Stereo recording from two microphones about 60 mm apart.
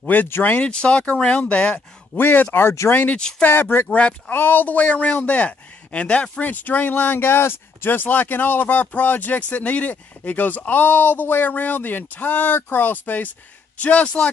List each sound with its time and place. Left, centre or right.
0.0 s speech: left
0.6 s speech: centre
2.1 s speech: left
2.9 s speech: left
4.3 s speech: left